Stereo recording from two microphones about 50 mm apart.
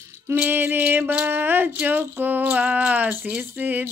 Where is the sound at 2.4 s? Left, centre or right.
Right.